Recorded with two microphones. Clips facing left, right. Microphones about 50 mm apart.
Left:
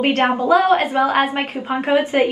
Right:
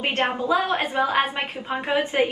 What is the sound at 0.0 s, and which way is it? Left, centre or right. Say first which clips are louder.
A woman's voice: left 7 dB; left.